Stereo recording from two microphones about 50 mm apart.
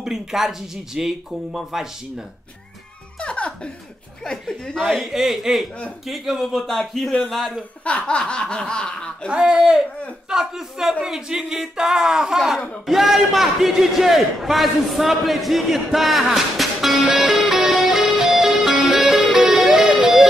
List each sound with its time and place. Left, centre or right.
0.0 s speech: centre
3.2 s music: left
4.2 s speech: centre
5.1 s a man's voice: centre
7.8 s speech: left
9.3 s a man's voice: centre
18.8 s music: centre